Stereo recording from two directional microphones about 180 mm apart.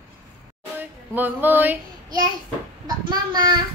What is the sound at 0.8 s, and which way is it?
Music, 10° right (ahead or behind).